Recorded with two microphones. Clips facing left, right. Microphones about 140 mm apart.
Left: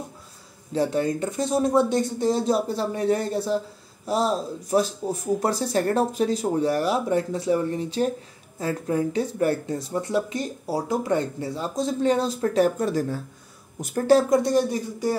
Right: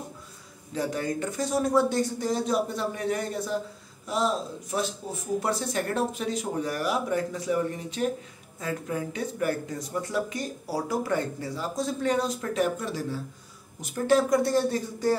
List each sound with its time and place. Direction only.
0.7 s speech: 25° left (ahead or behind)
14.3 s speech: 20° left (ahead or behind)